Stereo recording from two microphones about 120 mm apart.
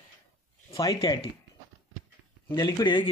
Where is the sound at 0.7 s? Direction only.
30° left (ahead or behind).